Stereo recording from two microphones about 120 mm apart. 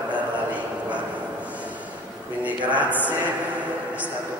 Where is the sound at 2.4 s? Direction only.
10° right (ahead or behind).